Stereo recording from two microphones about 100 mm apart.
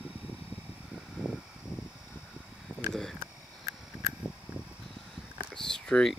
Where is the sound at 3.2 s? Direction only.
25° right (ahead or behind).